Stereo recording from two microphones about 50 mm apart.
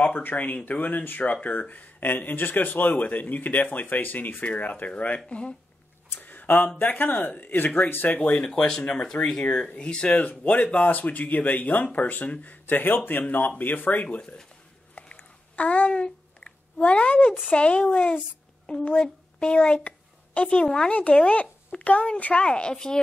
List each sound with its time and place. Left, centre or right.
0.2 s a woman's voice: left
6.1 s a sound: left
6.8 s speech: left
8.2 s a woman's voice: left
8.5 s speech: centre
9.4 s speech: left
15.0 s a sound: left
15.5 s a sound: left
16.8 s a woman's voice: left